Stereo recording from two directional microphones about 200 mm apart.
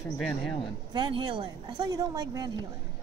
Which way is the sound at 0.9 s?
20° right (ahead or behind).